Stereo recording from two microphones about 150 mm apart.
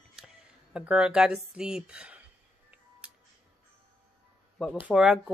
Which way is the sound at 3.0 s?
5° right (ahead or behind).